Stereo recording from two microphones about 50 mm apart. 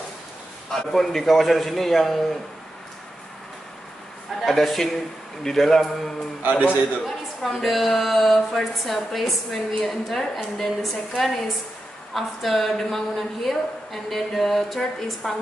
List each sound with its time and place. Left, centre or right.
0.7 s a woman's voice: centre
4.4 s a woman's voice: centre
6.4 s a man's voice: right
7.1 s a woman's voice: centre